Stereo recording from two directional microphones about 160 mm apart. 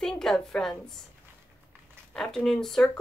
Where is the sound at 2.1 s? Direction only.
5° left (ahead or behind).